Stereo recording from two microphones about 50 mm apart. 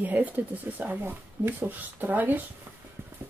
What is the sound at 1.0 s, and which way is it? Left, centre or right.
Speech, right.